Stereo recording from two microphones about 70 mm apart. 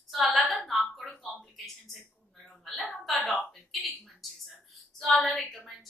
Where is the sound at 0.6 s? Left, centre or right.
Centre.